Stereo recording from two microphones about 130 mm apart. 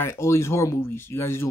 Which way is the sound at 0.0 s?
20° left (ahead or behind).